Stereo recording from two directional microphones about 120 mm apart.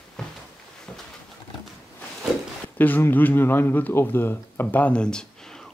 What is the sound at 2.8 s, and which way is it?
Speech, 15° left (ahead or behind).